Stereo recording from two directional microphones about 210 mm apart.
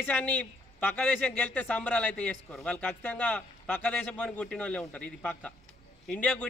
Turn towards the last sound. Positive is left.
turn(degrees=5)  # may be behind; listen again after turning